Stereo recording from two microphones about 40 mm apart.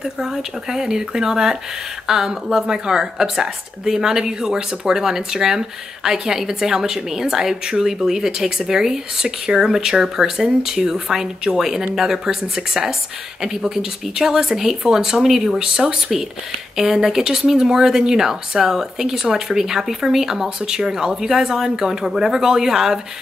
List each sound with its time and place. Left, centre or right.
0.0 s speech: centre